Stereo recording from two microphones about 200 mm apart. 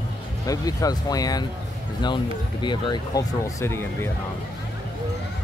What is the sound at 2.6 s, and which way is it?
Speech, 20° left (ahead or behind).